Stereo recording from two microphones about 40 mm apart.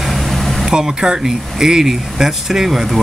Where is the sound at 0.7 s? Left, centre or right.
Right.